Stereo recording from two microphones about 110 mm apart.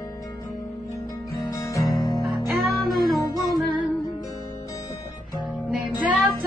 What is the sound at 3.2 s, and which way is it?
Music, 30° left (ahead or behind).